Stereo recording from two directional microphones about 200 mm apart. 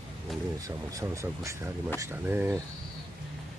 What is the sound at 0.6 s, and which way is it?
Speech, 15° right (ahead or behind).